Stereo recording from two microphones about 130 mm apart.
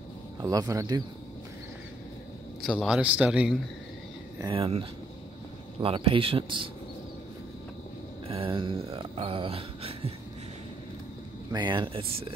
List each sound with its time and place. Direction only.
0.4 s a man's voice: 30° right (ahead or behind)
2.6 s a man's voice: centre (ahead or behind)
3.0 s speech: 10° right (ahead or behind)
4.6 s speech: 45° right (ahead or behind)
8.3 s speech: 45° right (ahead or behind)
11.5 s speech: 35° right (ahead or behind)